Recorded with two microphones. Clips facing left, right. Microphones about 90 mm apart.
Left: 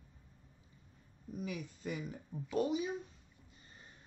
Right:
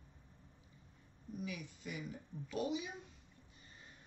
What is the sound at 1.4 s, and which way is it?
Speech, 40° left (ahead or behind).